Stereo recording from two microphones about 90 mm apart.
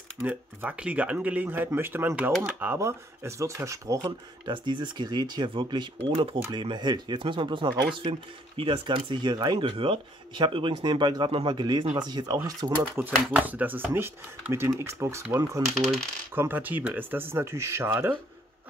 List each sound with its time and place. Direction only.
0.3 s speech: 15° right (ahead or behind); by 4.0 s 35° right (ahead or behind)
4.0 s speech: 55° right (ahead or behind)
6.1 s speech: 90° right
6.5 s speech: 60° right (ahead or behind)
12.9 s speech: 20° right (ahead or behind)
16.3 s speech: 20° right (ahead or behind)